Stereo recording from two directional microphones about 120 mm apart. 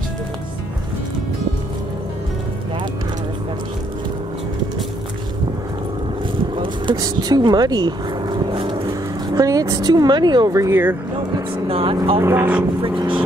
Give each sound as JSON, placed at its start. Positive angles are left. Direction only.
{"t": 7.0, "sound": "vehicle", "side_deg": -35}
{"t": 9.3, "sound": "speech", "side_deg": -30}
{"t": 11.6, "sound": "speech", "side_deg": -50}
{"t": 12.2, "sound": "speech", "side_deg": -20}